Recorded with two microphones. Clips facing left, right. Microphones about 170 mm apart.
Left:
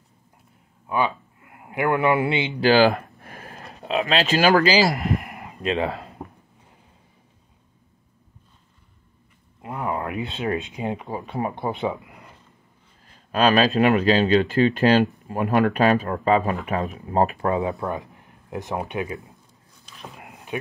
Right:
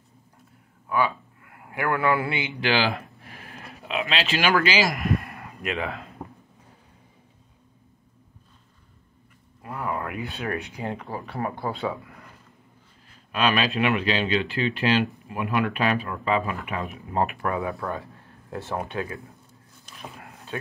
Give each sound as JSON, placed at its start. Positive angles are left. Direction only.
{"t": 0.8, "sound": "speech", "side_deg": 20}
{"t": 2.6, "sound": "speech", "side_deg": 45}
{"t": 5.0, "sound": "a sound", "side_deg": 20}
{"t": 5.7, "sound": "speech", "side_deg": 35}
{"t": 9.6, "sound": "speech", "side_deg": 20}
{"t": 13.3, "sound": "speech", "side_deg": 40}
{"t": 20.2, "sound": "a sound", "side_deg": 15}